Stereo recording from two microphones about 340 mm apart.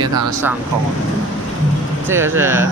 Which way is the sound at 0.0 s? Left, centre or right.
Centre.